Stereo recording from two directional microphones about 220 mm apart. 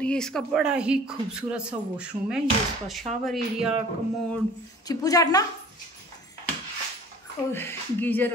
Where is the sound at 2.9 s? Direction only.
Centre (ahead or behind).